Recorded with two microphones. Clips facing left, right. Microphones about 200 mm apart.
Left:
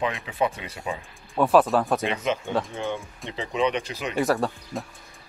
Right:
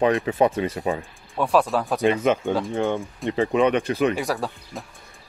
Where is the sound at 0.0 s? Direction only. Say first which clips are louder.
Right 7 dB; 45° right (ahead or behind).